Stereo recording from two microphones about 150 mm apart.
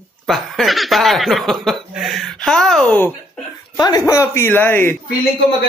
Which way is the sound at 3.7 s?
25° left (ahead or behind).